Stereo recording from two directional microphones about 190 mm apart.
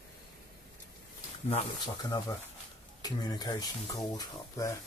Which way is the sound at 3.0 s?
20° left (ahead or behind).